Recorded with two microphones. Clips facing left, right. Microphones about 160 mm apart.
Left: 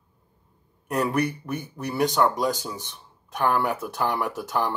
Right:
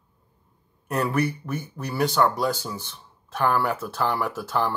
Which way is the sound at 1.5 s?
20° left (ahead or behind).